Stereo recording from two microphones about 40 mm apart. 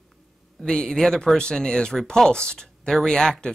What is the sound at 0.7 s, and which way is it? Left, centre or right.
A woman's voice, centre.